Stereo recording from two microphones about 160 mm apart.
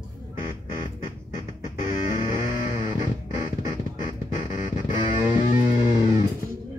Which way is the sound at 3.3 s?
25° right (ahead or behind).